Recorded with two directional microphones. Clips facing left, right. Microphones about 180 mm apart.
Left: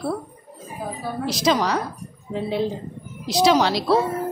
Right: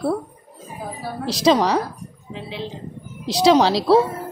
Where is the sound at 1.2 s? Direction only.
30° right (ahead or behind).